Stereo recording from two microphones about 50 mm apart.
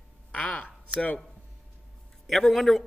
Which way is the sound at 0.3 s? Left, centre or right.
Left.